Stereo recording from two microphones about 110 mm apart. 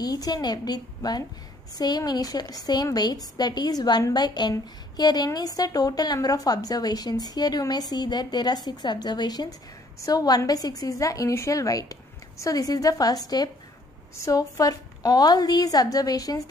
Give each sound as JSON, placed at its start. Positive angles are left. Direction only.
{"t": 0.0, "sound": "a woman's voice", "side_deg": 35}